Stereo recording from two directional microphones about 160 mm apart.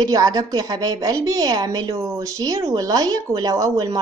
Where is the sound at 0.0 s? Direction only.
25° right (ahead or behind).